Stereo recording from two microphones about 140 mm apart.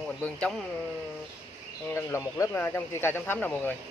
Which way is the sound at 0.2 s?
5° left (ahead or behind).